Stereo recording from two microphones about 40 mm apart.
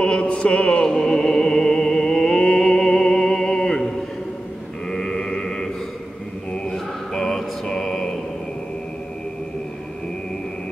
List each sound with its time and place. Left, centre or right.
0.0 s music: left
0.8 s music: centre
4.9 s chant: centre
6.5 s mantra: centre
7.2 s mantra: centre